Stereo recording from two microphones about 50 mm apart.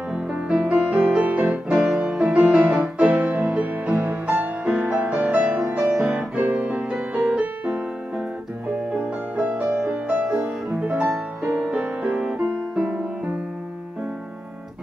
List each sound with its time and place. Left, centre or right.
0.1 s music: right
1.8 s music: centre
6.3 s music: right
8.9 s music: right
10.2 s music: centre
10.7 s music: right